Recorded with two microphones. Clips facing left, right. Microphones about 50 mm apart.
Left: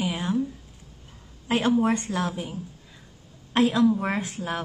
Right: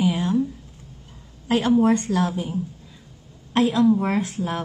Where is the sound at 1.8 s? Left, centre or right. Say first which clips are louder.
Right 5 dB; left.